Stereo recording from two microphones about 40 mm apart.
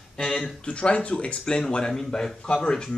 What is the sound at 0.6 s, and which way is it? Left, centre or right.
Speech, left.